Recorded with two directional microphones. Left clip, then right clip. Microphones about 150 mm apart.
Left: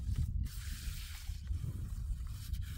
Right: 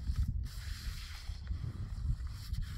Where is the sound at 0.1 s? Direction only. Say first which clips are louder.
Even; 20° left (ahead or behind).